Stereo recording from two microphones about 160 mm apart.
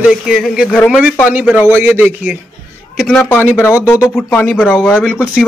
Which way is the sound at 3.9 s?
20° left (ahead or behind).